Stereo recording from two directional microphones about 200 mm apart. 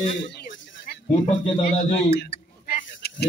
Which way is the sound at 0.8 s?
40° left (ahead or behind).